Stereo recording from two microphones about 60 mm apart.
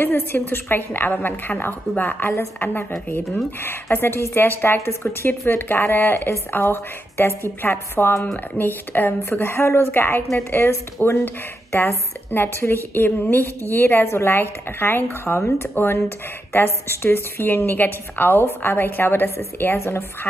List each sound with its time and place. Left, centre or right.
0.0 s a woman's voice: left